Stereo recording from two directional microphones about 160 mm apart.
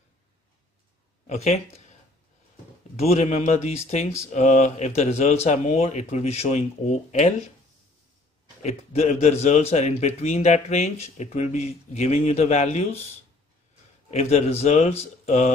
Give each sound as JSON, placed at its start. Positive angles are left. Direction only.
{"t": 1.2, "sound": "speech", "side_deg": 45}
{"t": 3.0, "sound": "a man's voice", "side_deg": 40}
{"t": 8.6, "sound": "a man's voice", "side_deg": 45}
{"t": 14.1, "sound": "a man's voice", "side_deg": 40}